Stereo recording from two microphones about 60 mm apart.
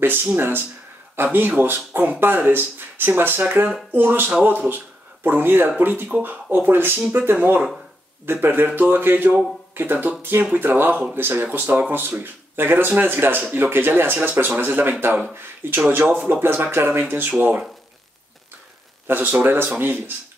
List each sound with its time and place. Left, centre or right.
0.0 s speech: right
3.4 s speech: right
3.9 s speech: right
11.7 s speech: centre
12.5 s speech: right
19.0 s speech: right